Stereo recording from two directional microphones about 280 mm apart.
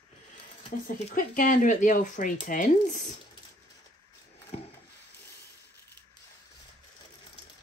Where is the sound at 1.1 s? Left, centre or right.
Left.